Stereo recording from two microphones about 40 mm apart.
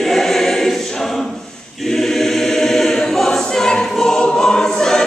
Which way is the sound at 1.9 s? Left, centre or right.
Centre.